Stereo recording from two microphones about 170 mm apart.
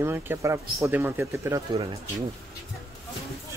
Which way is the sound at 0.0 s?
15° right (ahead or behind).